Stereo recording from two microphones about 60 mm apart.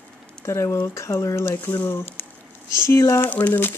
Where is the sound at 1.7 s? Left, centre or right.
Left.